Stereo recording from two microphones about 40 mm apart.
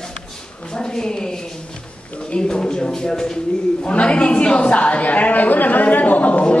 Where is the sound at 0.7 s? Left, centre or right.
Centre.